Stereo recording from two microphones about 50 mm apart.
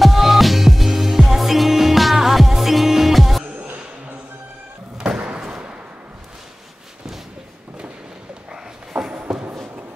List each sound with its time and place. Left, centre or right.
0.0 s music: centre
4.9 s slam: centre
8.5 s a sound: centre